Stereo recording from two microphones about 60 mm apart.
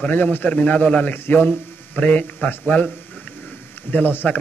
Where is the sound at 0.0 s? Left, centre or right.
Left.